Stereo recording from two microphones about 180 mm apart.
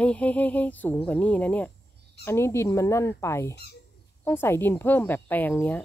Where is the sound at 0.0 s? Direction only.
5° left (ahead or behind).